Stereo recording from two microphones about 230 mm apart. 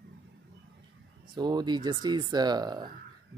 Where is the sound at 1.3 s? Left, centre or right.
Centre.